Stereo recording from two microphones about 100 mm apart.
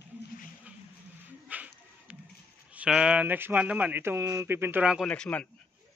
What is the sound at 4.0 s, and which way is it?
Speech, 30° right (ahead or behind).